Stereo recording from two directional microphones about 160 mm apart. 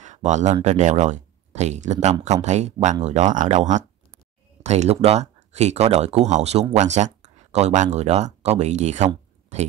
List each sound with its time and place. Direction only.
0.0 s speech: 50° right (ahead or behind)